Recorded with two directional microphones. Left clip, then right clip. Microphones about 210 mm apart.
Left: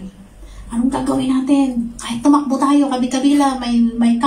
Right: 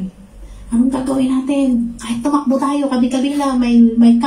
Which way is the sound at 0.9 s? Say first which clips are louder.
Right 1 dB; centre (ahead or behind).